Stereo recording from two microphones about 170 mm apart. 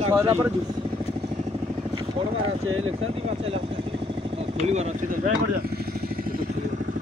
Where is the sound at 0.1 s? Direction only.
15° right (ahead or behind).